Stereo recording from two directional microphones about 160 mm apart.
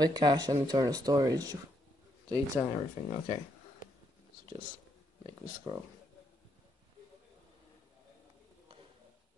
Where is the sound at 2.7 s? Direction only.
20° right (ahead or behind).